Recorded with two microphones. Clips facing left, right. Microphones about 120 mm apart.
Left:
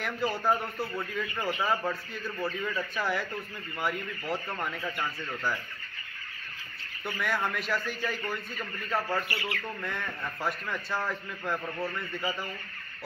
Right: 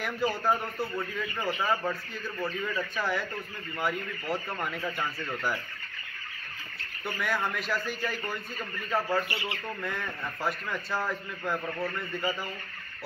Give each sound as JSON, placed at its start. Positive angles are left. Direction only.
{"t": 0.0, "sound": "a man's voice", "side_deg": 0}
{"t": 7.2, "sound": "a man's voice", "side_deg": 0}
{"t": 9.3, "sound": "speech", "side_deg": -25}
{"t": 9.8, "sound": "a man's voice", "side_deg": 0}